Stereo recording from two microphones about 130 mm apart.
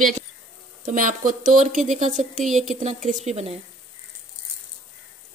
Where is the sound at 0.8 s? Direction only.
90° right; by 3.1 s 70° right (ahead or behind).